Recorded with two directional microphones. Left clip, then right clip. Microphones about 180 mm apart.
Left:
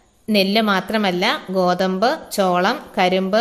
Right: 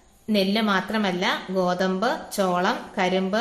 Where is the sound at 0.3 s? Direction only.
35° left (ahead or behind).